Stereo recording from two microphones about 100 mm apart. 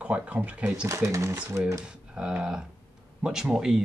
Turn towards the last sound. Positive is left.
turn(degrees=-5)  # may be behind; listen again after turning